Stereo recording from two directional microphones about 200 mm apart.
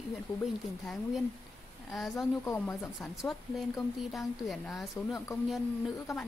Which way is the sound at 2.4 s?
15° left (ahead or behind).